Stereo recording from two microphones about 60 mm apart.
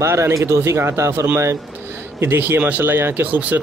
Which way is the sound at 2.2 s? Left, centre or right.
Right.